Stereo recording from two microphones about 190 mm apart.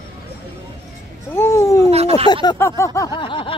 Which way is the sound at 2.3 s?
20° left (ahead or behind).